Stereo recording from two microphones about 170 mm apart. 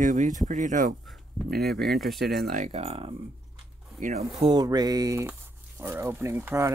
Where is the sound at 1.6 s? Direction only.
Centre (ahead or behind).